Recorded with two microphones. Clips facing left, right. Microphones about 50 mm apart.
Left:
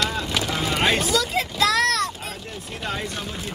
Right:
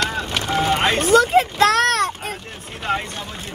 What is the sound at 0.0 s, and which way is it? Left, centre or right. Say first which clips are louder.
Vehicle: right 2 dB; right.